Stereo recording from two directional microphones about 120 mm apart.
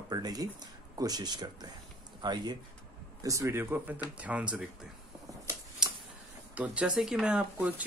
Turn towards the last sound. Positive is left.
turn(degrees=-10)  # may be behind; listen again after turning